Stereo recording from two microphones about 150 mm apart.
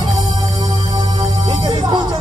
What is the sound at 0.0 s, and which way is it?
Music, 25° right (ahead or behind).